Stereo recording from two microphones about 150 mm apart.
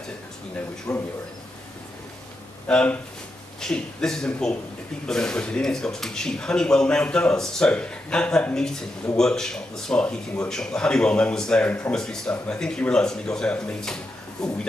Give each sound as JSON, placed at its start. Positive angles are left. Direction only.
{"t": 0.9, "sound": "a man's voice", "side_deg": 20}
{"t": 2.7, "sound": "speech", "side_deg": 5}